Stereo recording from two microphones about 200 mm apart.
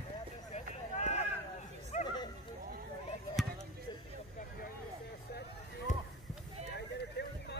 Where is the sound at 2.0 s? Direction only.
20° left (ahead or behind).